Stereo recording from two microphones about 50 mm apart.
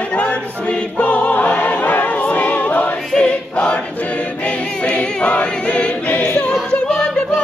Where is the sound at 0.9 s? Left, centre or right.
Left.